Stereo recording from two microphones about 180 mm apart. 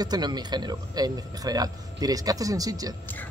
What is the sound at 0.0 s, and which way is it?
Speech, 20° right (ahead or behind).